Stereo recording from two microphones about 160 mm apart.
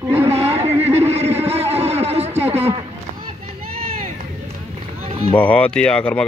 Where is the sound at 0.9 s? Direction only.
40° right (ahead or behind).